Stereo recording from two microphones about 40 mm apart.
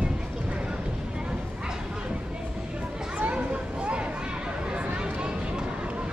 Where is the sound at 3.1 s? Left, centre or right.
Right.